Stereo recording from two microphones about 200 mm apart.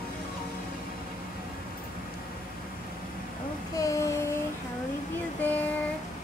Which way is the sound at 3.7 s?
15° left (ahead or behind).